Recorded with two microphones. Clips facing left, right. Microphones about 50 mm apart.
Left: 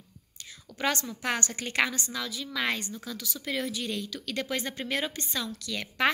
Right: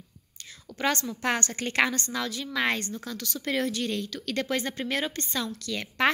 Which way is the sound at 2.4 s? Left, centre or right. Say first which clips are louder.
Right 3 dB; centre.